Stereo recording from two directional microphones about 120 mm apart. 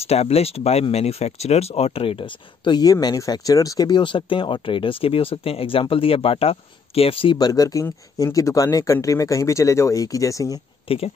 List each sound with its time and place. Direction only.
0.0 s speech: 60° left (ahead or behind)
7.3 s speech: 30° left (ahead or behind)
10.9 s speech: 50° left (ahead or behind)